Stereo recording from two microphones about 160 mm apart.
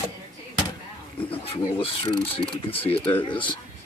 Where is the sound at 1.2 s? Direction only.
35° left (ahead or behind).